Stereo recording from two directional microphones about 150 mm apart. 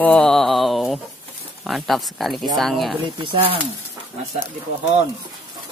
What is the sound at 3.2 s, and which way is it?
Speech, 35° right (ahead or behind).